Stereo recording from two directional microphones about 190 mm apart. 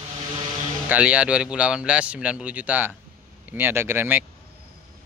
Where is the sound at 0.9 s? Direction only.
5° right (ahead or behind).